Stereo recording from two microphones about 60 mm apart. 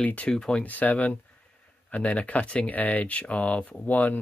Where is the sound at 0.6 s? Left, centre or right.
Left.